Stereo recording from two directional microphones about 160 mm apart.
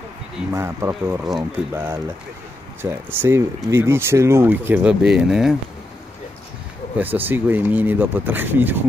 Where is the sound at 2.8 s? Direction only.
15° right (ahead or behind).